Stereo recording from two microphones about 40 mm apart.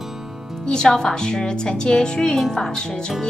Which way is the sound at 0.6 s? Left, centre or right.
Centre.